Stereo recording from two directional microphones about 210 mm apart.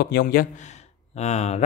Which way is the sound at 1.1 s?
30° left (ahead or behind).